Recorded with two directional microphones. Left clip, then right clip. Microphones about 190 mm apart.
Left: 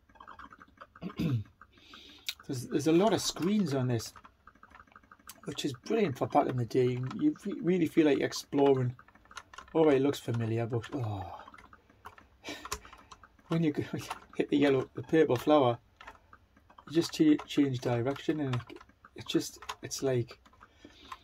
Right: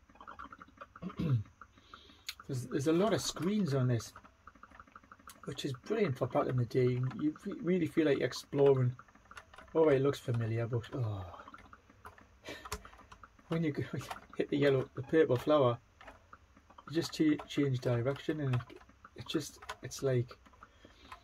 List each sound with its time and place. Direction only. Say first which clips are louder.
2.4 s speech: left 3 dB; 40° left (ahead or behind)
5.4 s speech: left 4 dB; 40° left (ahead or behind)
13.5 s speech: left 4 dB; 40° left (ahead or behind)
16.9 s speech: left 5 dB; 40° left (ahead or behind)